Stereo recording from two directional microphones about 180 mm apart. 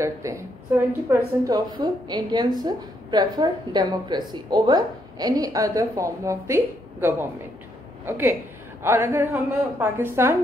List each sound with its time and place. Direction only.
0.0 s a woman's voice: 15° right (ahead or behind)